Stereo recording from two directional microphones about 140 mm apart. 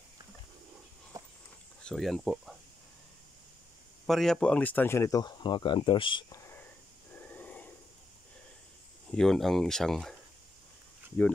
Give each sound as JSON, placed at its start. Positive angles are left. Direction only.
{"t": 1.8, "sound": "speech", "side_deg": 5}
{"t": 4.1, "sound": "speech", "side_deg": 5}
{"t": 6.3, "sound": "whispering", "side_deg": 20}
{"t": 7.2, "sound": "a sound", "side_deg": 10}
{"t": 9.1, "sound": "speech", "side_deg": 5}
{"t": 11.2, "sound": "speech", "side_deg": 15}